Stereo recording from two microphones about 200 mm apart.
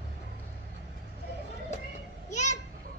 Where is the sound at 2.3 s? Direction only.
35° left (ahead or behind).